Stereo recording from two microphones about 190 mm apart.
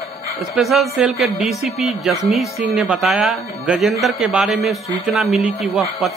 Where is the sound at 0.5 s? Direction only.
Centre (ahead or behind).